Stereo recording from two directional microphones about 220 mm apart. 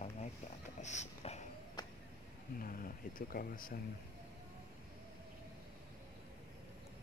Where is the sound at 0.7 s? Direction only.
30° left (ahead or behind).